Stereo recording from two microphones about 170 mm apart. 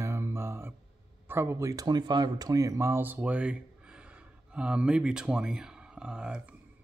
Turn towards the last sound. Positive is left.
turn(degrees=-5)  # may be behind; listen again after turning